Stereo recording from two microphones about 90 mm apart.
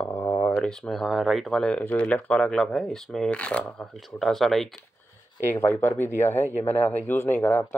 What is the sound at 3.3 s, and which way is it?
Speech, 15° left (ahead or behind).